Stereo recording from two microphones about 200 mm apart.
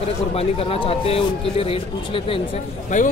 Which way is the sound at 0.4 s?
30° left (ahead or behind).